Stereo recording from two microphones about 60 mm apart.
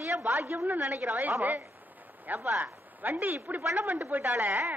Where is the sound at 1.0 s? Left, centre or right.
Right.